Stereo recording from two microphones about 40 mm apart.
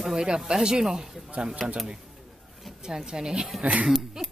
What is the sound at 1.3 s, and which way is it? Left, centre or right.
Speech, right.